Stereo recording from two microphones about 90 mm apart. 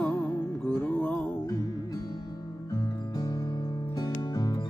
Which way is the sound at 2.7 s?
45° left (ahead or behind).